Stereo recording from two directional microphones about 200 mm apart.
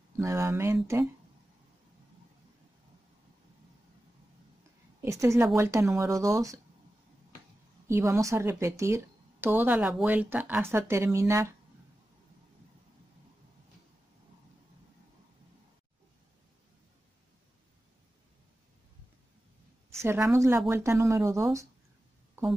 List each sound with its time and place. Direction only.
0.2 s a woman's voice: 15° right (ahead or behind)
5.0 s a woman's voice: 15° right (ahead or behind)
7.9 s a woman's voice: 15° right (ahead or behind)
20.0 s a woman's voice: 15° right (ahead or behind)